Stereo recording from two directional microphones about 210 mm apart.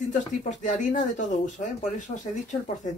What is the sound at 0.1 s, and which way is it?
Speech, 35° left (ahead or behind).